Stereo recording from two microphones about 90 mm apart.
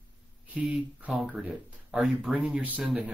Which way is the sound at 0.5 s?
15° right (ahead or behind).